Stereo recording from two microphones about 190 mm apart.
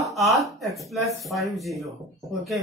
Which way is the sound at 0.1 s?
Centre (ahead or behind).